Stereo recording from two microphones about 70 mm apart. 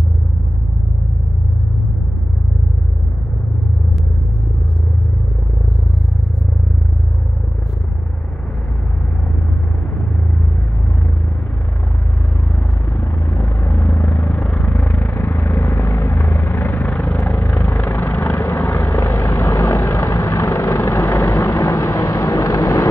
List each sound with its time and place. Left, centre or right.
12.9 s vehicle: left